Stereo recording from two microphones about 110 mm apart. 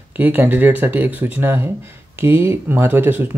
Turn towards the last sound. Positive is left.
turn(degrees=-20)  # may be behind; listen again after turning